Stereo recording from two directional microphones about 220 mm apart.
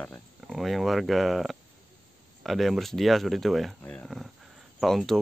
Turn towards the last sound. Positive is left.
turn(degrees=0)  # may be behind; listen again after turning